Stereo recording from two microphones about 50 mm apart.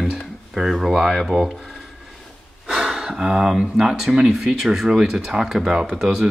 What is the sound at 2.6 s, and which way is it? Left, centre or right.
Gasp, centre.